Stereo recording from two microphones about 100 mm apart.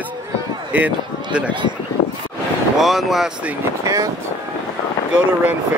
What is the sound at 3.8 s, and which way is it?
Speech, 35° right (ahead or behind).